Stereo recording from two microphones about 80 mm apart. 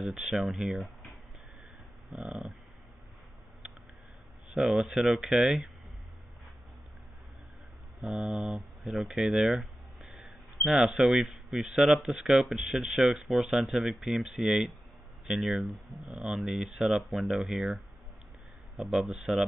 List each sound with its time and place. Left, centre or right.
0.0 s speech: centre
2.2 s speech: centre
4.6 s speech: centre
8.1 s speech: centre
10.1 s speech: centre
16.7 s speech: centre
17.0 s speech: centre
18.8 s speech: centre